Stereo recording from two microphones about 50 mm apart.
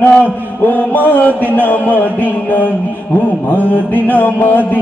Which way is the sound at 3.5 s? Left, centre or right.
Left.